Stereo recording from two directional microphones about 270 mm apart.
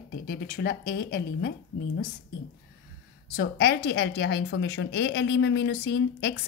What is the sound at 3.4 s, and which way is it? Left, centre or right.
A woman's voice, left.